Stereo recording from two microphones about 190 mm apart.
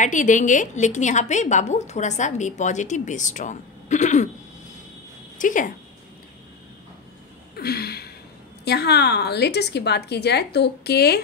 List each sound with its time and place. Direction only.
0.0 s a woman's voice: 40° left (ahead or behind)
5.4 s speech: 45° left (ahead or behind)
7.5 s gasp: 55° left (ahead or behind)
8.6 s a woman's voice: 60° left (ahead or behind)